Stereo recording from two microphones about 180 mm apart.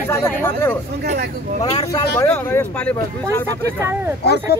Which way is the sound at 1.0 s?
55° right (ahead or behind).